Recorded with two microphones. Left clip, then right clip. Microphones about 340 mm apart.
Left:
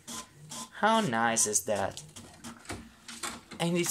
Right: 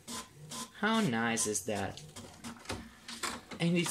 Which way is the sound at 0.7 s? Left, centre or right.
Centre.